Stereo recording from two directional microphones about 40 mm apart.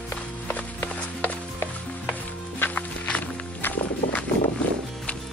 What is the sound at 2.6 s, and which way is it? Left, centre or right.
Music, left.